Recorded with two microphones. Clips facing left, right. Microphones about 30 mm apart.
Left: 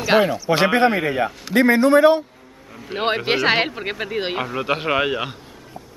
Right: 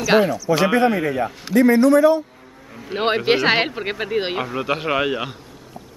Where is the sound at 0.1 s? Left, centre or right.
Centre.